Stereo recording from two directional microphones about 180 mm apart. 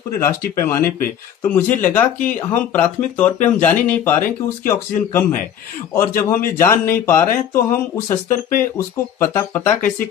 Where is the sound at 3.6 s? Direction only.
10° left (ahead or behind).